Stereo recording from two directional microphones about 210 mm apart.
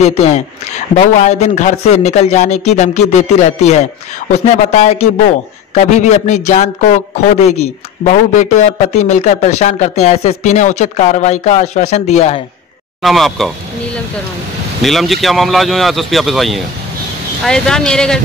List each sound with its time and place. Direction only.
0.0 s speech: 30° left (ahead or behind)
13.0 s speech: centre (ahead or behind)
14.8 s speech: centre (ahead or behind)